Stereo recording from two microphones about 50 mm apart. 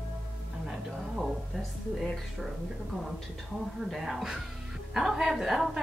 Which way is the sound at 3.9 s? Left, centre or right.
Centre.